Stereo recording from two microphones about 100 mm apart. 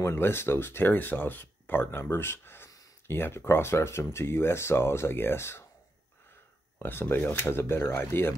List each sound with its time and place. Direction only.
0.0 s speech: 25° left (ahead or behind)
6.8 s speech: 20° left (ahead or behind)